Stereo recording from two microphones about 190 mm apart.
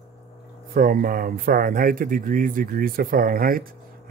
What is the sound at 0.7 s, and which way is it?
Speech, 50° right (ahead or behind).